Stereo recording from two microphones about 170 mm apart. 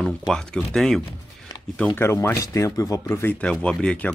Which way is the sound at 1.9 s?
15° left (ahead or behind).